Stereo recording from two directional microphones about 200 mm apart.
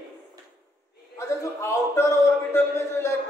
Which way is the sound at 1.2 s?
15° left (ahead or behind).